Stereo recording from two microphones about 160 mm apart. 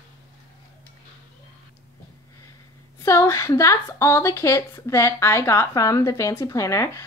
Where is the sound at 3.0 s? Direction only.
20° left (ahead or behind).